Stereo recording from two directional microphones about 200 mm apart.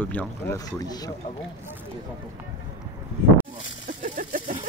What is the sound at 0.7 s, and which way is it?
Speech, 20° left (ahead or behind).